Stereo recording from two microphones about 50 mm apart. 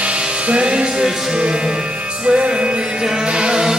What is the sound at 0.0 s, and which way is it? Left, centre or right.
Music, right.